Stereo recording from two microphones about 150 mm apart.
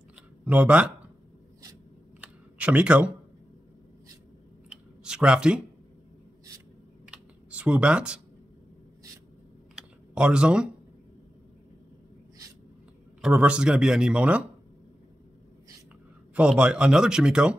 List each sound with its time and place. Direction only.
0.5 s a man's voice: 10° right (ahead or behind)
2.2 s a sound: 10° right (ahead or behind)
4.6 s a sound: 5° right (ahead or behind)
7.1 s computer keyboard: 5° right (ahead or behind)
10.1 s a man's voice: 5° right (ahead or behind)
13.2 s a man's voice: 5° right (ahead or behind)
16.3 s speech: 5° right (ahead or behind)